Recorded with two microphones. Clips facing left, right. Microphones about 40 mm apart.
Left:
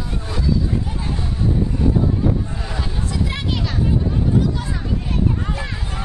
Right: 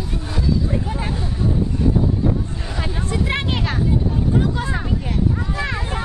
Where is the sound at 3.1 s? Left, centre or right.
Right.